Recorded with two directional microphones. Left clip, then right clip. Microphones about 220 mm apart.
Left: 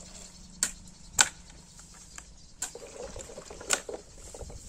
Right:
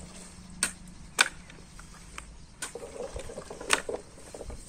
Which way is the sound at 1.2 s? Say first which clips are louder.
Right 1 dB; 60° left (ahead or behind).